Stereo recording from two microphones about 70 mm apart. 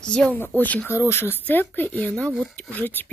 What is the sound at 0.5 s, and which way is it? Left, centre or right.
Speech, right.